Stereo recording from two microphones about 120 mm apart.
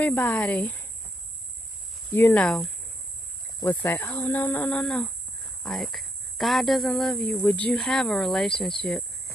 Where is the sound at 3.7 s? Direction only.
20° left (ahead or behind).